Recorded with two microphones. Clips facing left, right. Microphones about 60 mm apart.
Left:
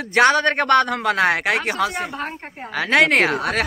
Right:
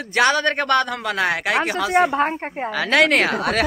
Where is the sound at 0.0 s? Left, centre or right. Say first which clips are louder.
Left 2 dB; left.